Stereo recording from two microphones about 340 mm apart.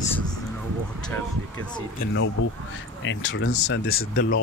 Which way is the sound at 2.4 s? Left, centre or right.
Left.